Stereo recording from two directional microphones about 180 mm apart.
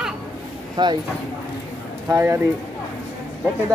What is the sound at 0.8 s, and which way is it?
Speech, 25° right (ahead or behind).